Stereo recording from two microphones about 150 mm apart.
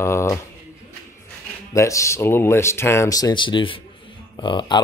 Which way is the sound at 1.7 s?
20° left (ahead or behind).